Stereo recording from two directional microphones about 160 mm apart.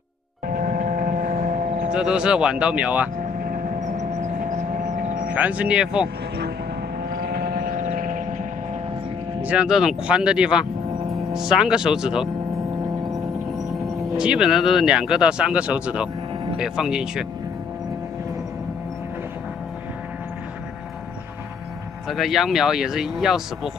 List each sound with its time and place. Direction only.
0.5 s vehicle: 60° right (ahead or behind)
1.9 s speech: 5° right (ahead or behind)
3.9 s vehicle: 45° right (ahead or behind); by 5.3 s 60° right (ahead or behind)
5.3 s speech: 10° right (ahead or behind)
7.2 s vehicle: 70° right (ahead or behind); by 8.4 s 55° right (ahead or behind)
9.4 s speech: 10° right (ahead or behind)
13.8 s speech: 5° right (ahead or behind)
22.0 s speech: centre (ahead or behind)